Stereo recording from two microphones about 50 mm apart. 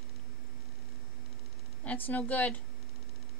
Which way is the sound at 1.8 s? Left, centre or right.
Left.